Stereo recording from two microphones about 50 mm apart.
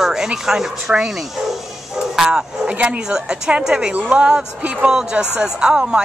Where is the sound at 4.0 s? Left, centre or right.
Right.